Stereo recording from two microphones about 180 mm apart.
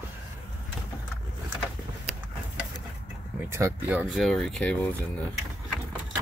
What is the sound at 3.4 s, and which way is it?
Speech, 15° right (ahead or behind).